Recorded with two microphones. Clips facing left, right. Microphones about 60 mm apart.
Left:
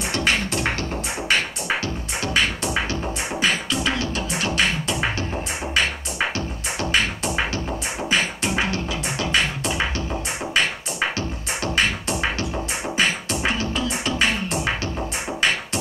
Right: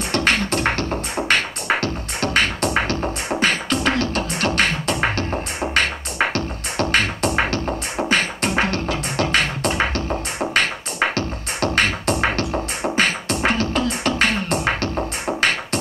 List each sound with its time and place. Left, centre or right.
0.1 s music: right
3.3 s beatboxing: right
5.6 s music: right
8.0 s beatboxing: right
15.2 s music: right